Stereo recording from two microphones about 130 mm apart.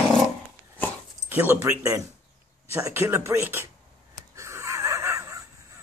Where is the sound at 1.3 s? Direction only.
15° right (ahead or behind).